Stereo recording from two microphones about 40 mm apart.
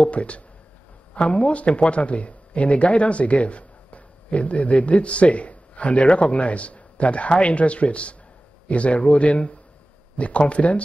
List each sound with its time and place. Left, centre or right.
0.1 s a man's voice: left